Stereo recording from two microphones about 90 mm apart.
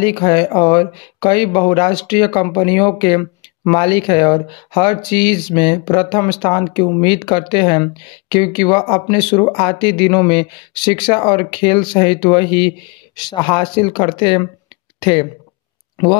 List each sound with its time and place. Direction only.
0.0 s speech: 65° left (ahead or behind)
15.0 s speech: 75° left (ahead or behind)